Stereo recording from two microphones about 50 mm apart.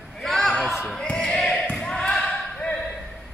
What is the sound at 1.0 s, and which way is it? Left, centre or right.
Basketball bounce, left.